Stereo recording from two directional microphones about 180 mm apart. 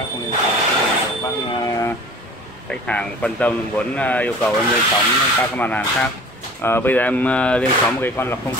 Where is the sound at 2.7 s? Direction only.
5° left (ahead or behind).